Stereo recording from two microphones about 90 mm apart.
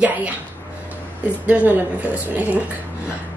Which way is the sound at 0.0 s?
15° right (ahead or behind).